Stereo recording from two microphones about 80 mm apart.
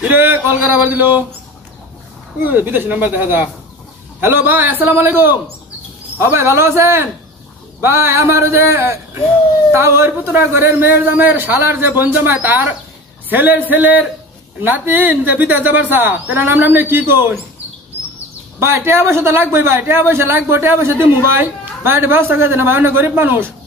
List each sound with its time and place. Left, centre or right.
0.0 s a sound: right
2.4 s a man's voice: right
18.6 s a man's voice: right